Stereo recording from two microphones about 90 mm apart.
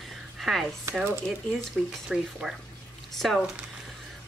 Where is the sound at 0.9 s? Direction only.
30° right (ahead or behind).